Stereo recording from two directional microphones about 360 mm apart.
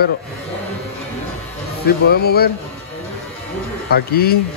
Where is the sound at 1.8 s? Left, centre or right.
Left.